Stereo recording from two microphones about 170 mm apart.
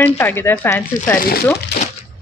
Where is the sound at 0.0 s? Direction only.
10° left (ahead or behind).